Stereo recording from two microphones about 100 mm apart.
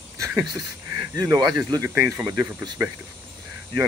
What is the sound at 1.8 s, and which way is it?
Speech, 25° right (ahead or behind).